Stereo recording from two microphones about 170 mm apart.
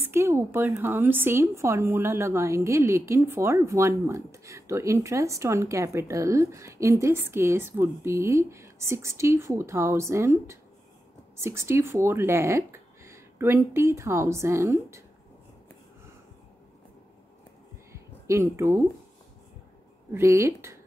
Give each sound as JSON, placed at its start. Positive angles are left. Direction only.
{"t": 0.0, "sound": "speech", "side_deg": -15}
{"t": 17.9, "sound": "a sound", "side_deg": -15}
{"t": 20.1, "sound": "speech", "side_deg": -15}